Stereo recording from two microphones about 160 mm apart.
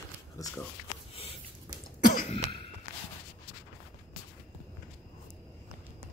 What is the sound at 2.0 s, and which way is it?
Throat clearing, 55° left (ahead or behind).